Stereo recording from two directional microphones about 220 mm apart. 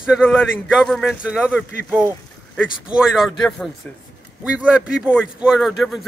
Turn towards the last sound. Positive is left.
turn(degrees=0)  # may be behind; listen again after turning